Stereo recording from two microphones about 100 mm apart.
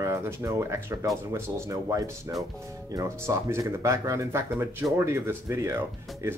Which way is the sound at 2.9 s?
35° right (ahead or behind).